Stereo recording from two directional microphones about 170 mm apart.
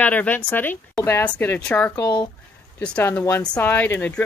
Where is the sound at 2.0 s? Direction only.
25° left (ahead or behind).